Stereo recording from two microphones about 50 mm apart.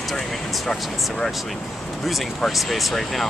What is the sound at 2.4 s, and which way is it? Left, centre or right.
Speech, centre.